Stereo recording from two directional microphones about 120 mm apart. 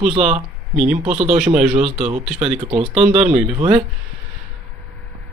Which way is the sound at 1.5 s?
75° right (ahead or behind).